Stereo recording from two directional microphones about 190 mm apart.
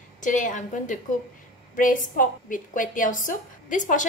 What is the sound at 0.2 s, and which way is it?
A woman's voice, 40° left (ahead or behind).